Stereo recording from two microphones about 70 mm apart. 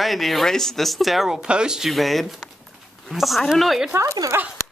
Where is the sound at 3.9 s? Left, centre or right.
Right.